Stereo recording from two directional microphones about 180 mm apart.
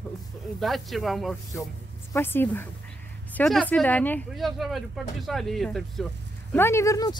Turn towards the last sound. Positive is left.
turn(degrees=15)  # may be behind; listen again after turning